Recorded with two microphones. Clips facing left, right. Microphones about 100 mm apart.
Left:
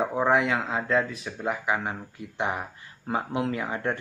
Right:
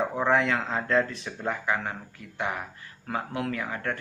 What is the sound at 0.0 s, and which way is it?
Speech, 15° left (ahead or behind).